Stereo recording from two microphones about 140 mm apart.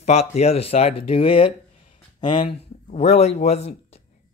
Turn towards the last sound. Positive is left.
turn(degrees=50)  # may be behind; listen again after turning